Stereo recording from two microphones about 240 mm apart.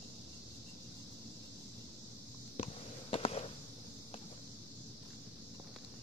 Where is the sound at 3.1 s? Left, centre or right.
Left.